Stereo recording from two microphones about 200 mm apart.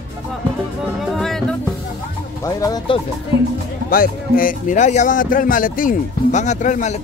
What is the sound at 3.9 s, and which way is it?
Speech, 45° left (ahead or behind).